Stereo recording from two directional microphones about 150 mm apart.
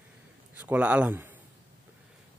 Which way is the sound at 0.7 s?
10° right (ahead or behind).